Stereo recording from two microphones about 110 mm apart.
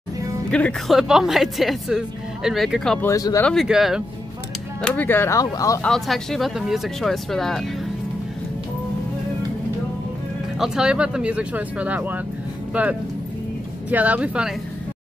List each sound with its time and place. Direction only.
0.5 s speech: 10° left (ahead or behind)
0.9 s speech: 5° right (ahead or behind)
3.1 s speech: 30° left (ahead or behind)
3.6 s speech: 5° right (ahead or behind)
4.8 s speech: 15° left (ahead or behind)
5.4 s speech: 30° left (ahead or behind)
5.8 s speech: 5° left (ahead or behind)
10.6 s speech: 5° right (ahead or behind)